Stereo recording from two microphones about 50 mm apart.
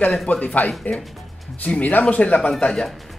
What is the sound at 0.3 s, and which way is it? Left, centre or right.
Speech, left.